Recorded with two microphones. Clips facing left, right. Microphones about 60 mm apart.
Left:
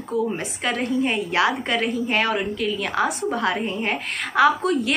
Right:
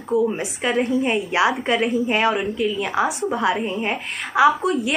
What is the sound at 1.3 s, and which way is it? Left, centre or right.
A woman's voice, centre.